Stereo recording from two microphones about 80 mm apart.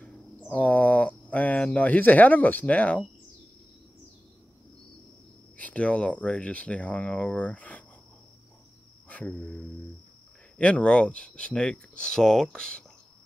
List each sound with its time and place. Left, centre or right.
0.0 s speech: centre
5.6 s speech: centre
9.1 s speech: centre